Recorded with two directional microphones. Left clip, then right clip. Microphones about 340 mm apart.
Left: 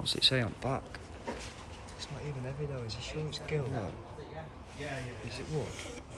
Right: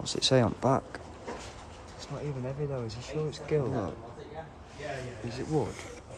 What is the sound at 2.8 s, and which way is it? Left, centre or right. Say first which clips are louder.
Speech: right 5 dB; centre.